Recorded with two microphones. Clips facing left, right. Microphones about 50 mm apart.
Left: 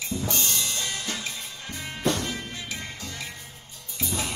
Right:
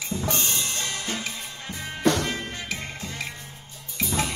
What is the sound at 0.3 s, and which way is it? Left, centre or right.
Drum kit, right.